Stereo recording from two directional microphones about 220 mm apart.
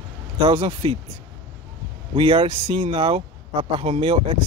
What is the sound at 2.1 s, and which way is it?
Speech, 25° right (ahead or behind).